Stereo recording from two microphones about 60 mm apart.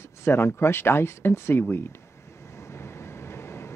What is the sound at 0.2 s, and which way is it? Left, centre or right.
Speech, left.